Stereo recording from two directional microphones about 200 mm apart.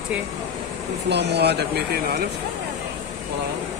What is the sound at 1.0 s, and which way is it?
Speech, 55° right (ahead or behind).